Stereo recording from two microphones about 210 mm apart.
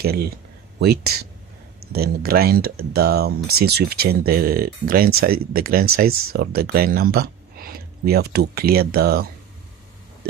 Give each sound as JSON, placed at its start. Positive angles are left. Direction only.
{"t": 0.0, "sound": "speech", "side_deg": -45}